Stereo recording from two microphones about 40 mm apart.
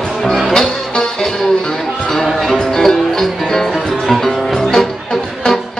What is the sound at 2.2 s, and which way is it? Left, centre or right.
Music, centre.